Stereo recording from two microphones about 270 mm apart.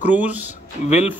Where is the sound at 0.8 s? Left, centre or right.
Left.